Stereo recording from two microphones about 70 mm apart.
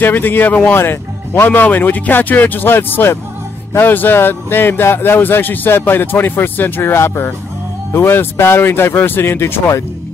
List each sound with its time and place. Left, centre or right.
0.0 s speech: left